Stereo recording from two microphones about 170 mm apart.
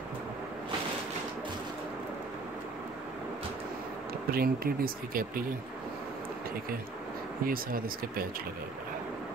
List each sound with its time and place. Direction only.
4.3 s speech: 60° right (ahead or behind)
7.4 s speech: 60° right (ahead or behind)